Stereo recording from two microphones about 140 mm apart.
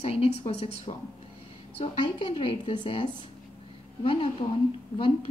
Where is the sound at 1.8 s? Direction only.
35° left (ahead or behind).